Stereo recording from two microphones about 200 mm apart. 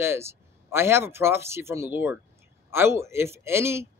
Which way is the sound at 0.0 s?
10° right (ahead or behind).